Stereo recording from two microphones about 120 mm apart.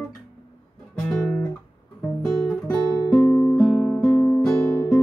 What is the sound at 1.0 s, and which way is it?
Guitar, 5° left (ahead or behind).